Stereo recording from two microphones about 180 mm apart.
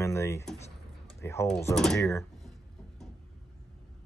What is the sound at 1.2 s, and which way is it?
Speech, 15° left (ahead or behind).